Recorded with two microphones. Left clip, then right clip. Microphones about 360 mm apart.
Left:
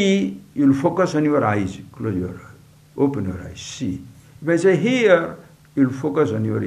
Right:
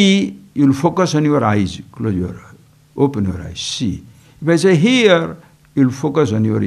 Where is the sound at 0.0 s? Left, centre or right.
Right.